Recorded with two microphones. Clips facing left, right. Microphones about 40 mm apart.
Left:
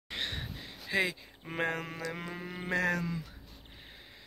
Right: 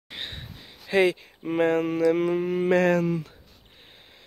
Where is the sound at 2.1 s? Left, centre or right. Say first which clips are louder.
Right 17 dB; right.